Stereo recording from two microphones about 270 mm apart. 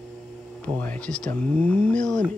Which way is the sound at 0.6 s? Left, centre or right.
Centre.